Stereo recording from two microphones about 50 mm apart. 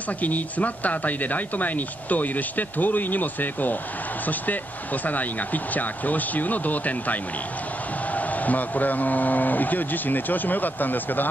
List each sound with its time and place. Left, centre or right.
0.2 s speech: left
5.0 s speech: left
8.5 s speech: left